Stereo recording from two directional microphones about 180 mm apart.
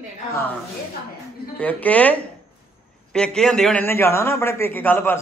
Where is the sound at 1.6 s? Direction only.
10° left (ahead or behind).